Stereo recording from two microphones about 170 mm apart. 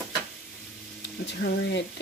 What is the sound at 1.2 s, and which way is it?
Speech, 90° left.